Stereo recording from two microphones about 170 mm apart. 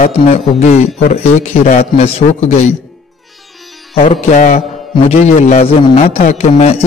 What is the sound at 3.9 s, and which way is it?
A man's voice, 40° left (ahead or behind).